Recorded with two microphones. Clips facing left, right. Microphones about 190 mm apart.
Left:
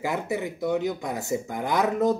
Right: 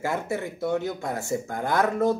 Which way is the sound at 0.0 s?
15° left (ahead or behind).